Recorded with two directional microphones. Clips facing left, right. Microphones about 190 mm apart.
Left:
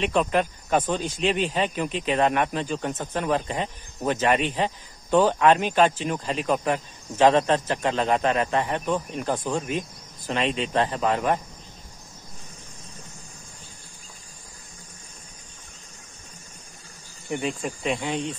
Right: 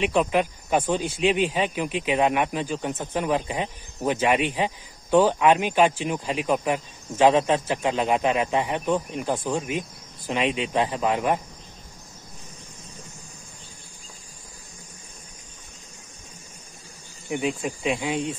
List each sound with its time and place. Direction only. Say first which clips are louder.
0.0 s speech: right 1 dB; 10° right (ahead or behind)
17.3 s speech: right 2 dB; 5° right (ahead or behind)